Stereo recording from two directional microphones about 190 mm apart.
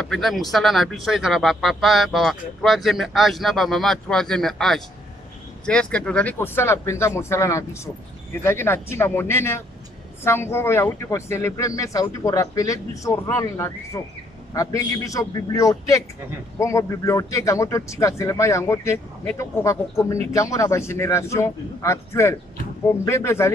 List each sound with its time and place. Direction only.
0.0 s a man's voice: centre (ahead or behind)